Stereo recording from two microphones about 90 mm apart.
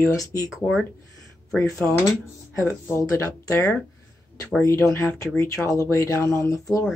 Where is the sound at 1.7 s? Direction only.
15° left (ahead or behind).